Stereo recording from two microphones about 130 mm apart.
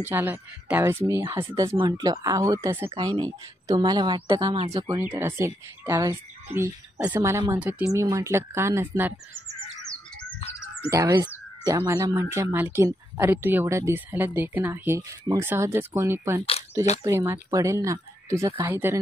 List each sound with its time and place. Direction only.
0.0 s speech: 15° right (ahead or behind)
1.8 s speech: 30° right (ahead or behind)
4.9 s speech: 15° right (ahead or behind)
10.9 s speech: 25° right (ahead or behind)